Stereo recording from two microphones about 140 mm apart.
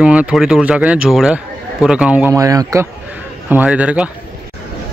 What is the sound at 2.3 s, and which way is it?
Speech, 25° right (ahead or behind).